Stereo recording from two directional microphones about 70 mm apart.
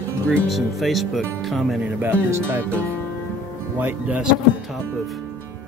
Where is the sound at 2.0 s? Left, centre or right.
Right.